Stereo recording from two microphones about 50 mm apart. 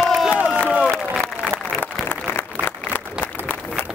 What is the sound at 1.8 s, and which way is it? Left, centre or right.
Applause, left.